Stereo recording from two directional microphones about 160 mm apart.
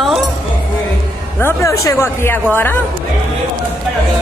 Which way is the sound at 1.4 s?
20° left (ahead or behind).